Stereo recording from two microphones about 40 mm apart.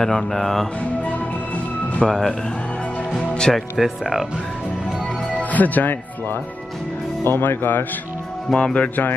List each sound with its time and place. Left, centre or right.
0.0 s speech: centre
2.0 s speech: centre
3.5 s speech: centre
5.4 s speech: left
8.5 s speech: left